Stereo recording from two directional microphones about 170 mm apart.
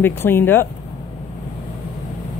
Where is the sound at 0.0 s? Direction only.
15° left (ahead or behind).